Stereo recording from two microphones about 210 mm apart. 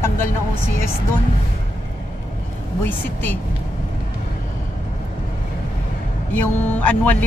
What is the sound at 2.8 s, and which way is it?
Speech, 10° left (ahead or behind).